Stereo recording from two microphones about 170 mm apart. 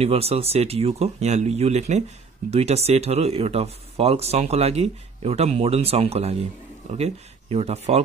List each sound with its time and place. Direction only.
0.0 s speech: 35° right (ahead or behind)